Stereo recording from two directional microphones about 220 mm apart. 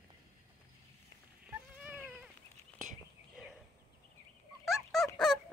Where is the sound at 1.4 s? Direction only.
5° right (ahead or behind).